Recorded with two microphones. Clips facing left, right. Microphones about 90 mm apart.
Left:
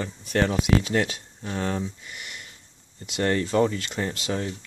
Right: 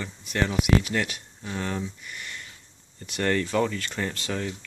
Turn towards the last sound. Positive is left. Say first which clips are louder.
# left 2 dB
turn(degrees=25)  # may be behind; listen again after turning